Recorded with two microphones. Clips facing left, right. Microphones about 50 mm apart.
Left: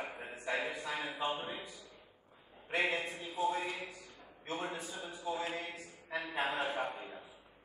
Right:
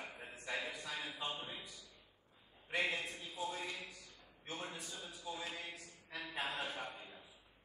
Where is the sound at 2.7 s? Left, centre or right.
Centre.